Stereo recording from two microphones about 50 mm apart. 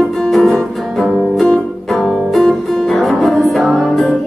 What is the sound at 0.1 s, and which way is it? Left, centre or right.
Music, centre.